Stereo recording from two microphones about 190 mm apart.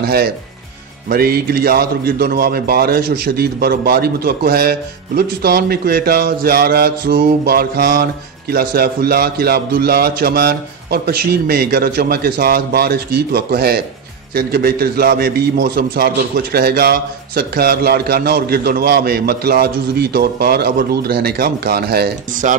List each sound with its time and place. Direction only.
0.0 s a man's voice: 55° right (ahead or behind)
22.4 s speech: 40° right (ahead or behind)